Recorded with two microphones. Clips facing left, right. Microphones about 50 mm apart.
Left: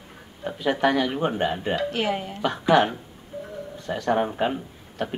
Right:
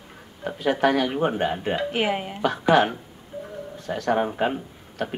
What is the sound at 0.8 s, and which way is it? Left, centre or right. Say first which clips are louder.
Speech: right 1 dB; right.